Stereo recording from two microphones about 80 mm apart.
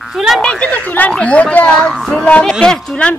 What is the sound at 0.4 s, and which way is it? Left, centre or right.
Speech, centre.